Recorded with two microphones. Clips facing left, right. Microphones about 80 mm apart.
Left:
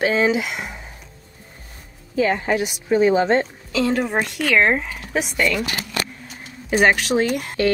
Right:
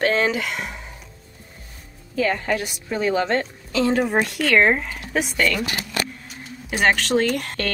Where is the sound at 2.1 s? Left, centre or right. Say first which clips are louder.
Left 3 dB; centre.